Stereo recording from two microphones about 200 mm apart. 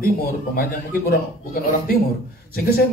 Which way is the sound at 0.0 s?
50° left (ahead or behind).